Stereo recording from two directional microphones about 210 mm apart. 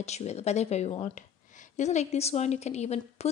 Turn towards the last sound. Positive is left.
turn(degrees=30)  # may be behind; listen again after turning